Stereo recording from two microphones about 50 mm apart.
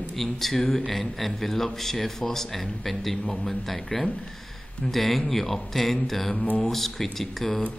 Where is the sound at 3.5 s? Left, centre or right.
Centre.